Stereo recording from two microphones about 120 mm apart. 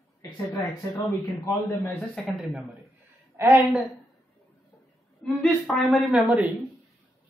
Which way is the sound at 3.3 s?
20° right (ahead or behind).